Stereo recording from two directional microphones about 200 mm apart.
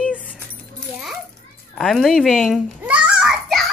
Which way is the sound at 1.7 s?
Centre (ahead or behind).